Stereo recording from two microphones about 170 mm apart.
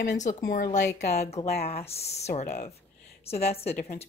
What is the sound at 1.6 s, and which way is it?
Speech, 35° left (ahead or behind).